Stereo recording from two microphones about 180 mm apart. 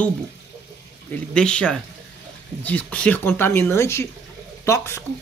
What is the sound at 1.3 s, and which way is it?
Speech, 5° left (ahead or behind).